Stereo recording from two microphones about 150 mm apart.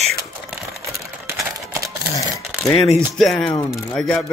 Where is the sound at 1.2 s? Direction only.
20° right (ahead or behind).